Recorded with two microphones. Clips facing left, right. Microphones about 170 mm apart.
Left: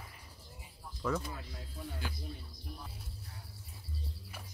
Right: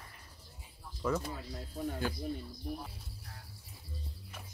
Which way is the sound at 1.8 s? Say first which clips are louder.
Right 8 dB; 50° right (ahead or behind).